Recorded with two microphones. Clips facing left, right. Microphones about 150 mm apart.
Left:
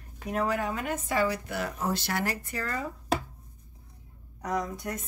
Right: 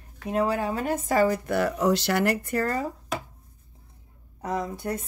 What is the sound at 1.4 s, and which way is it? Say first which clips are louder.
Speech: right 8 dB; 60° right (ahead or behind).